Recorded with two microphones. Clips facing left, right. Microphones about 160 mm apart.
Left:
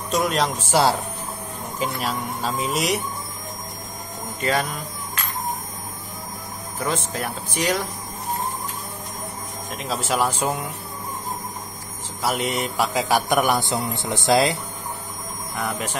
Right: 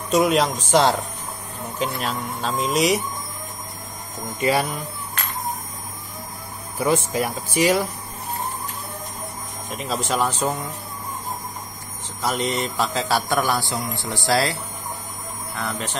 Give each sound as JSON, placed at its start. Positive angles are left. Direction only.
{"t": 0.1, "sound": "speech", "side_deg": 0}
{"t": 4.4, "sound": "speech", "side_deg": -10}
{"t": 6.8, "sound": "speech", "side_deg": -10}
{"t": 9.7, "sound": "speech", "side_deg": 0}
{"t": 12.2, "sound": "a man's voice", "side_deg": 10}